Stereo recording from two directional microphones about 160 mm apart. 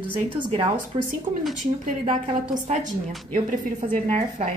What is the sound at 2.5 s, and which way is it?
Speech, 50° right (ahead or behind).